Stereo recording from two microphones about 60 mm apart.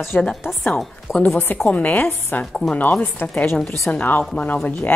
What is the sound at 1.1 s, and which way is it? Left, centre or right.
Speech, left.